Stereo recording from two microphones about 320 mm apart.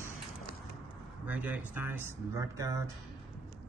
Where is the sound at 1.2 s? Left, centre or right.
Centre.